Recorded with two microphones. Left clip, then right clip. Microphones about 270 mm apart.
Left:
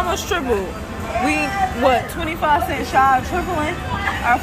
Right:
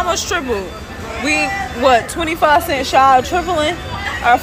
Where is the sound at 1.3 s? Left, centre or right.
Centre.